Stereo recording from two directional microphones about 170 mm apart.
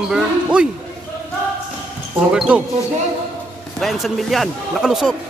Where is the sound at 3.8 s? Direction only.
Centre (ahead or behind).